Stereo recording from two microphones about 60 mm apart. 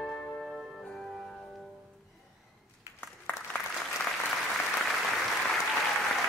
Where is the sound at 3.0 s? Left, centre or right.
Left.